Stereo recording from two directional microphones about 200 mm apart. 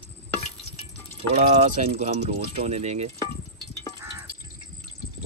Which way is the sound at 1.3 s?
30° right (ahead or behind).